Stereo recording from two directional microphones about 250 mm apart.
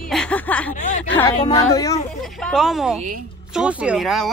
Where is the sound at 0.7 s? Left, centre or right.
Left.